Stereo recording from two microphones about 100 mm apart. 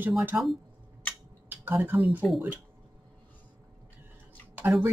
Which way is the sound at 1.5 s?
20° right (ahead or behind).